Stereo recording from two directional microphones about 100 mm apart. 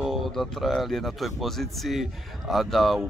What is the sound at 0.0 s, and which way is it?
Speech, centre (ahead or behind).